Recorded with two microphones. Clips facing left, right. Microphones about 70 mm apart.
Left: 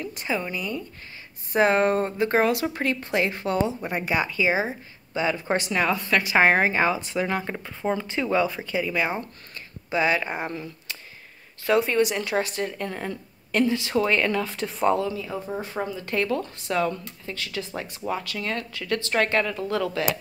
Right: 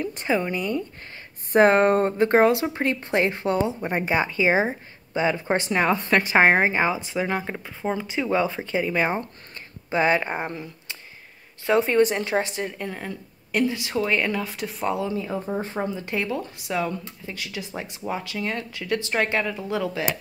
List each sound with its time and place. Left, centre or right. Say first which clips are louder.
0.1 s speech: right 4 dB; right
6.3 s speech: right 1 dB; right; by 15.0 s centre
15.0 s speech: right 2 dB; right; by 20.1 s centre